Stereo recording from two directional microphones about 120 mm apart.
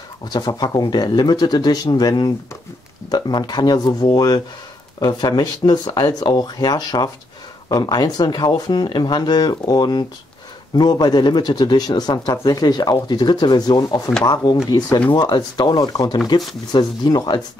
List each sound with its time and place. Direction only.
0.3 s speech: 35° left (ahead or behind)